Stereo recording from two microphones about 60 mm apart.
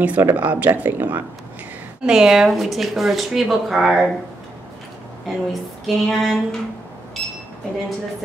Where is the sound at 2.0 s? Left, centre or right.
Centre.